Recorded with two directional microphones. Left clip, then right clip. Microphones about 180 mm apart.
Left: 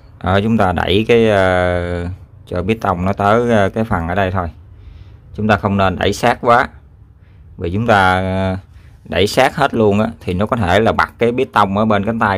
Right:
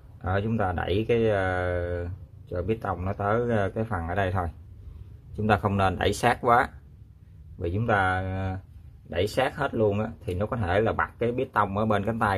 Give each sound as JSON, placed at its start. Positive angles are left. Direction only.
{"t": 0.2, "sound": "speech", "side_deg": 35}